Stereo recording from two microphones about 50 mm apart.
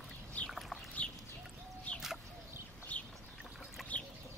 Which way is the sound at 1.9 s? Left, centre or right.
Left.